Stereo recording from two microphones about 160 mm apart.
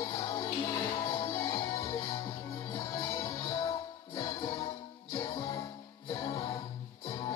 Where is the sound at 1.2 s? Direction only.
30° left (ahead or behind).